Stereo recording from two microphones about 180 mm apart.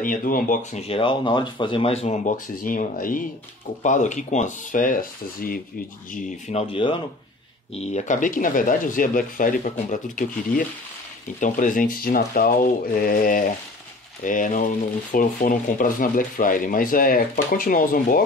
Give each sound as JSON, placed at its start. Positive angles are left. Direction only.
{"t": 0.0, "sound": "speech", "side_deg": 50}
{"t": 0.7, "sound": "speech", "side_deg": 30}
{"t": 6.1, "sound": "speech", "side_deg": 35}